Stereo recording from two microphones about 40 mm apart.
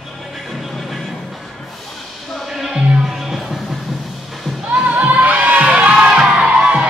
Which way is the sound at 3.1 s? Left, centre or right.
Centre.